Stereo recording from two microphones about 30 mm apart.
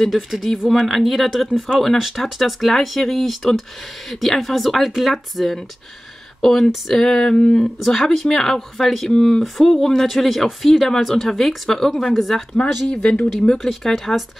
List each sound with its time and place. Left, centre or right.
0.1 s speech: centre
9.1 s speech: centre
10.0 s speech: centre
12.5 s speech: left; by 14.0 s centre